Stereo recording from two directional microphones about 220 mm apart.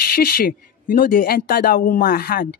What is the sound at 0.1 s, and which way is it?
Speech, 45° left (ahead or behind).